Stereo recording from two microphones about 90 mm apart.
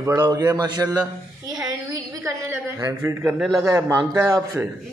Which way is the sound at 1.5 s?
40° right (ahead or behind).